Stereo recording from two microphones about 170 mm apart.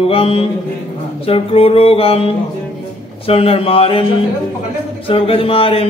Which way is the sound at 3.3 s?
35° left (ahead or behind).